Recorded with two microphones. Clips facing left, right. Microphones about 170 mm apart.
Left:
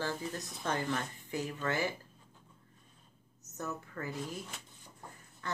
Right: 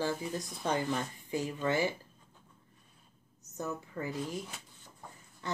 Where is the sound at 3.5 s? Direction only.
15° right (ahead or behind).